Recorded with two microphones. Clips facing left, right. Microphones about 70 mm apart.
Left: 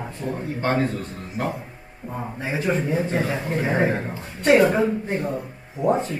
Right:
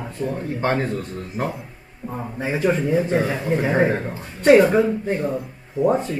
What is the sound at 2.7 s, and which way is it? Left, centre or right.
Speech, centre.